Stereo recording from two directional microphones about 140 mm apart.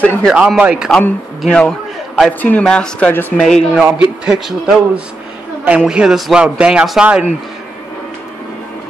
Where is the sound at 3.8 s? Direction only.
10° right (ahead or behind).